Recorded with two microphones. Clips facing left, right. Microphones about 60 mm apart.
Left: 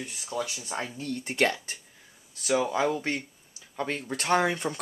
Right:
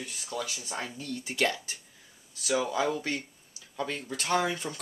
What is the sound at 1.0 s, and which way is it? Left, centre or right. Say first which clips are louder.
Speech: left 3 dB; left.